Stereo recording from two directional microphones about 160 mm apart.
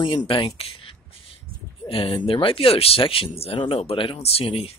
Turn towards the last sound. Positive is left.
turn(degrees=35)  # may be behind; listen again after turning